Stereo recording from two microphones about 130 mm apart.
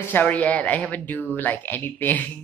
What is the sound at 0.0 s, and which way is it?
Speech, 15° left (ahead or behind).